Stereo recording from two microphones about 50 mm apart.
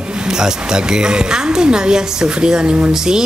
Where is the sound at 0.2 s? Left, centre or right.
Centre.